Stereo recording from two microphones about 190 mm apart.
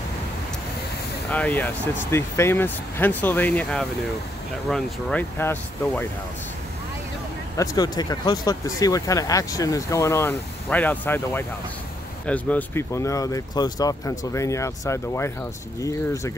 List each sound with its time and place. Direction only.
1.3 s speech: 10° left (ahead or behind)
7.5 s speech: 20° left (ahead or behind)